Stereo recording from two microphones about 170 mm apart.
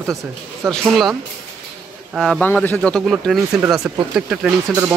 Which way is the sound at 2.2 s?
5° left (ahead or behind).